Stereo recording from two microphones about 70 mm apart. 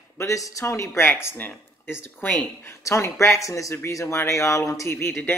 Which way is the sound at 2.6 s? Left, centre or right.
Left.